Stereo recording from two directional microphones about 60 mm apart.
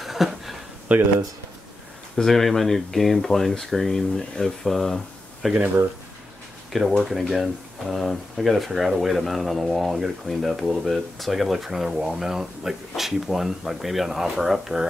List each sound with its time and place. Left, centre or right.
0.0 s a sound: centre
0.9 s speech: right
2.1 s speech: centre
6.7 s speech: centre